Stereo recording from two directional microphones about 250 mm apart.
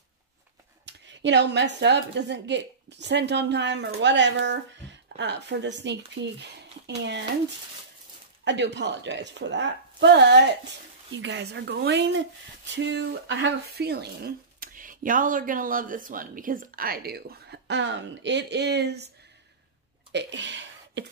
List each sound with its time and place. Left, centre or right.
0.8 s a woman's voice: right
8.5 s a woman's voice: right
20.1 s a sound: right